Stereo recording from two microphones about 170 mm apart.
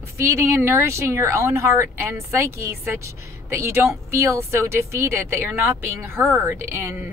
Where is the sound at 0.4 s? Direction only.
15° right (ahead or behind).